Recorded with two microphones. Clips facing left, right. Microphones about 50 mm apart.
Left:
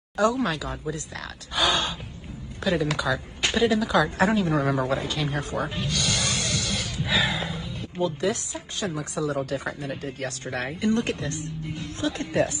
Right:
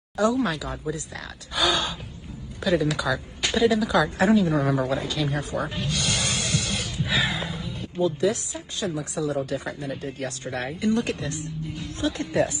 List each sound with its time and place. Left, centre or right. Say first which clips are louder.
0.2 s speech: even; left
1.5 s gasp: even; left
2.6 s a woman's voice: right 1 dB; left
4.2 s speech: right 2 dB; left
5.9 s music: even; right
7.4 s music: even; left
8.0 s speech: right 3 dB; left